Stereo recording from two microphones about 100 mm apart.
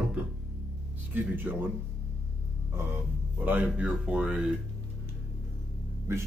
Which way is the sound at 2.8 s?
25° right (ahead or behind).